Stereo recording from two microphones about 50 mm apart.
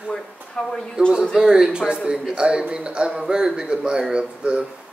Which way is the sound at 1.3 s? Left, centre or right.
Centre.